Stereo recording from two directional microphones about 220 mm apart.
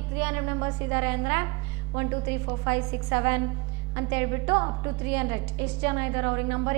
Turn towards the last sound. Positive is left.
turn(degrees=-15)  # may be behind; listen again after turning